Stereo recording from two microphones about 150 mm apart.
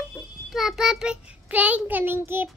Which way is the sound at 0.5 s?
5° right (ahead or behind).